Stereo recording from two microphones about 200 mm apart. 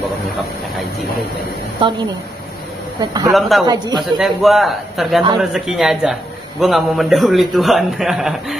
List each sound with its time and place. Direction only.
1.8 s a man's voice: 25° right (ahead or behind)
3.0 s a man's voice: 20° right (ahead or behind)
3.3 s a man's voice: centre (ahead or behind)
3.6 s a man's voice: 20° right (ahead or behind)
4.0 s a man's voice: centre (ahead or behind)